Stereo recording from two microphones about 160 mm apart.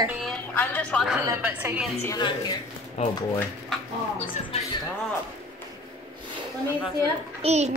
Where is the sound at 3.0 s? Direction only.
40° left (ahead or behind).